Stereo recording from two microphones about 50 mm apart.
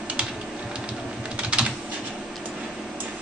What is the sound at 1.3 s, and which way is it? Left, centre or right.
Typing, right.